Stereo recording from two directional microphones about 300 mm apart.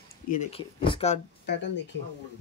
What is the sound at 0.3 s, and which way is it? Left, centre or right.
Speech, left.